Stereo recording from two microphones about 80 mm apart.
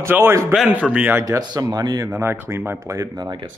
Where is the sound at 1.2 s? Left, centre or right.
Right.